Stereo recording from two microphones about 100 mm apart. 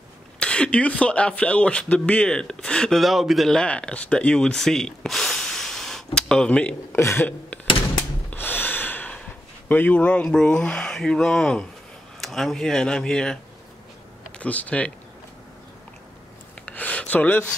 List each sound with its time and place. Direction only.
0.4 s speech: 10° left (ahead or behind)
6.9 s speech: 25° left (ahead or behind)
7.2 s a sound: 15° left (ahead or behind)
8.3 s snort: 20° left (ahead or behind)
9.7 s speech: 15° left (ahead or behind)
14.4 s speech: 15° left (ahead or behind)
16.6 s a sound: 15° left (ahead or behind)